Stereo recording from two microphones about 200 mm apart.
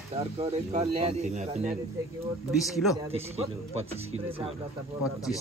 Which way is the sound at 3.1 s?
30° right (ahead or behind).